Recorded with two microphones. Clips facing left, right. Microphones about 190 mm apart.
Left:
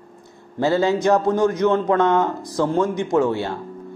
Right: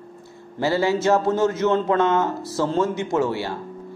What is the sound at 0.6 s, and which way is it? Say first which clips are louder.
Speech: left 2 dB; 20° left (ahead or behind).